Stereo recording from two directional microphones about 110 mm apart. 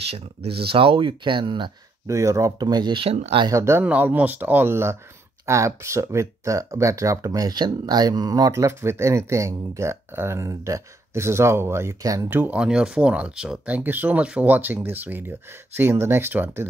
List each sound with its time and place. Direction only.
0.1 s speech: 60° right (ahead or behind)
2.0 s speech: 30° right (ahead or behind); by 3.1 s 45° right (ahead or behind)
3.5 s speech: 25° right (ahead or behind)
3.8 s speech: 15° right (ahead or behind); by 12.3 s 30° right (ahead or behind)
12.3 s speech: 15° right (ahead or behind)